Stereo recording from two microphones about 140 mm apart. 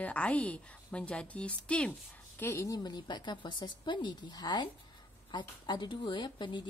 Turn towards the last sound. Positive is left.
turn(degrees=35)  # may be behind; listen again after turning